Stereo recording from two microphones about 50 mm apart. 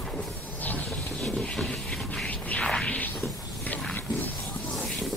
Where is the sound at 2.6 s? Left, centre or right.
Centre.